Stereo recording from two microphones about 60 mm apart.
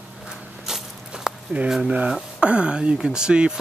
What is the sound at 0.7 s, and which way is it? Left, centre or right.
Walk, centre.